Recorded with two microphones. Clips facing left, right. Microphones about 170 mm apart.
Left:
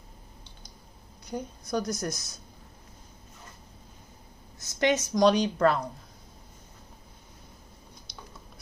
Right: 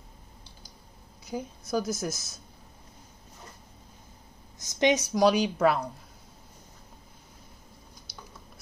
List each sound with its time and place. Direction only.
1.2 s a woman's voice: 5° right (ahead or behind)
4.6 s a woman's voice: 20° right (ahead or behind)
5.1 s speech: 5° right (ahead or behind)